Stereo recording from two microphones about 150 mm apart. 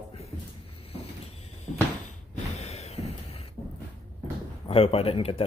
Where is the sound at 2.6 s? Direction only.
45° left (ahead or behind).